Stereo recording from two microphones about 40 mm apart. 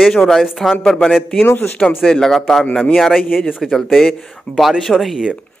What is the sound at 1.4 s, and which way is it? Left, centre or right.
Speech, left.